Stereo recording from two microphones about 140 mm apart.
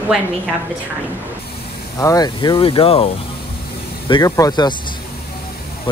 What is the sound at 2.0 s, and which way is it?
Speech, 25° left (ahead or behind).